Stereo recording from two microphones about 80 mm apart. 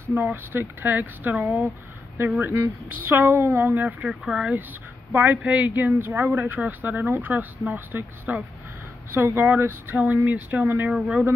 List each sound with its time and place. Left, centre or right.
0.1 s speech: right
4.1 s speech: centre
5.1 s speech: right
10.9 s speech: centre